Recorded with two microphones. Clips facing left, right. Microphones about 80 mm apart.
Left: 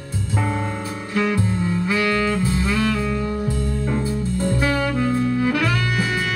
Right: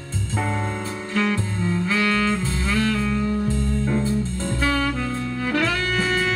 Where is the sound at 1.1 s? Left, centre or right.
Centre.